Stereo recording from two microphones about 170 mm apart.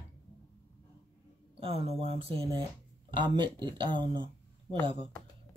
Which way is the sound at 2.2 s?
35° right (ahead or behind).